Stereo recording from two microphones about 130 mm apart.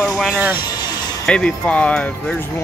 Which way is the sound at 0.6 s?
30° left (ahead or behind).